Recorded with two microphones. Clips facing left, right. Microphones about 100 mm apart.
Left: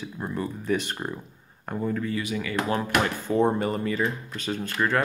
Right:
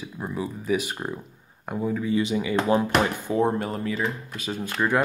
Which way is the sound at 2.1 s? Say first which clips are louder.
Right 5 dB; 20° right (ahead or behind).